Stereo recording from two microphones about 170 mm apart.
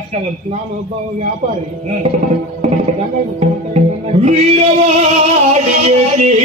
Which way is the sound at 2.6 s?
40° right (ahead or behind).